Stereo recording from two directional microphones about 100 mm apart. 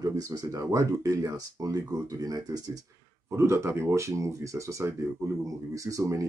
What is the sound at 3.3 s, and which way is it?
Speech, 30° right (ahead or behind).